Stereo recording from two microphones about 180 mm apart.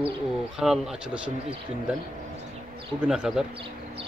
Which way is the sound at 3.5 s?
30° right (ahead or behind).